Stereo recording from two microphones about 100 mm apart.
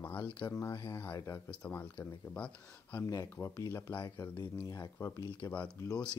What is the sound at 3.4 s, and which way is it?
Speech, 30° left (ahead or behind).